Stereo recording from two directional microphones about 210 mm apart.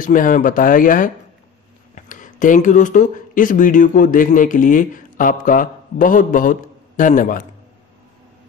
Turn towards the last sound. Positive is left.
turn(degrees=40)  # may be behind; listen again after turning